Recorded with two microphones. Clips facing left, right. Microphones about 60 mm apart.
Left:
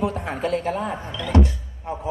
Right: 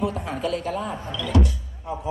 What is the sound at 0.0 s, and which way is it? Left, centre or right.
A man's voice, left.